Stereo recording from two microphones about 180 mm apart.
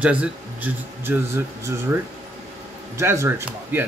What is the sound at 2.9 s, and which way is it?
Speech, 15° right (ahead or behind).